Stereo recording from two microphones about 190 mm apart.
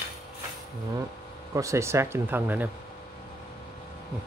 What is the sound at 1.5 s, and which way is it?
Speech, 15° right (ahead or behind).